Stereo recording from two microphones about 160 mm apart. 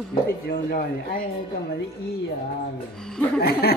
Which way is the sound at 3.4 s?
75° left (ahead or behind).